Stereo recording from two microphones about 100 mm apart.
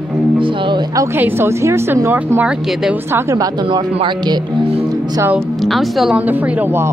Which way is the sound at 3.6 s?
55° right (ahead or behind).